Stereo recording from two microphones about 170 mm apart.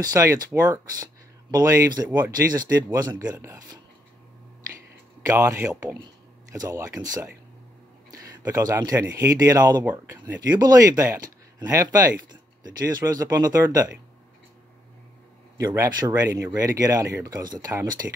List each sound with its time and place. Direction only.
0.0 s speech: 20° right (ahead or behind)
3.3 s speech: 10° right (ahead or behind)
5.2 s speech: 15° right (ahead or behind)
15.5 s speech: 20° right (ahead or behind)